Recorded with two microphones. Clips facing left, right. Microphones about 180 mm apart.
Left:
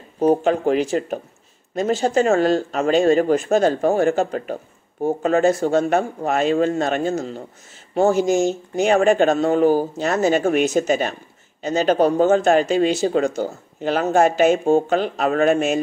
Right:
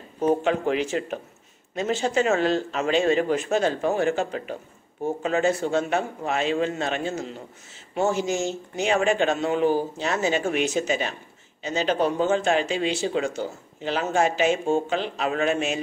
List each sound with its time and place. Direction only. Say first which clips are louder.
0.2 s speech: left 5 dB; 40° left (ahead or behind)